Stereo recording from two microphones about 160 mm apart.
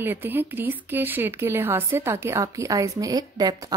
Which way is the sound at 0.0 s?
15° right (ahead or behind).